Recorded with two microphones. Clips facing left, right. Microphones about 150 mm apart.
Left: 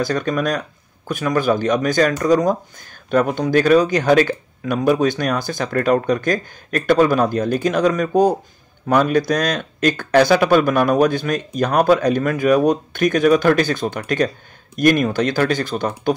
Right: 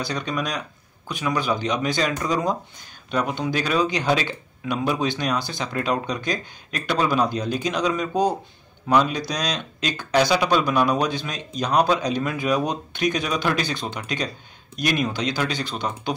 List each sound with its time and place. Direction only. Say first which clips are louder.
0.0 s speech: left 7 dB; 50° left (ahead or behind)